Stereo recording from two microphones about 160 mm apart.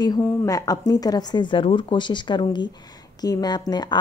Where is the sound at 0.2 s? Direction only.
15° left (ahead or behind).